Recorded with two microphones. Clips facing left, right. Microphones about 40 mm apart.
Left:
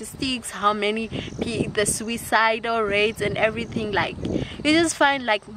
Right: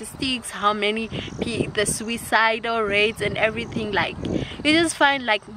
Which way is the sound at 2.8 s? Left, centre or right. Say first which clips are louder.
Right 2 dB; right.